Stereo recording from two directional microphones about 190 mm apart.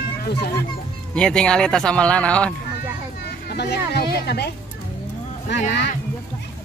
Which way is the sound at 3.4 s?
60° left (ahead or behind).